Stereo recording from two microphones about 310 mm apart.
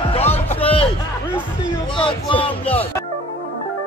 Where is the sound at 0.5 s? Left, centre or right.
Centre.